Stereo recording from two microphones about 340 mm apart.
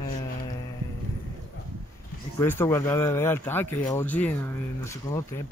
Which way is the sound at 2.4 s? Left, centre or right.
Centre.